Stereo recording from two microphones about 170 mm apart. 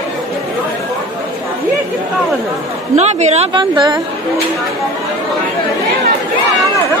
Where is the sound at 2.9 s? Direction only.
40° right (ahead or behind).